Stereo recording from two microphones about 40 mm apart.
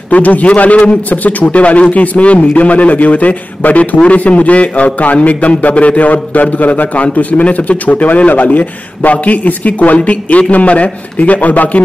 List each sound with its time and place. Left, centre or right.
0.1 s speech: left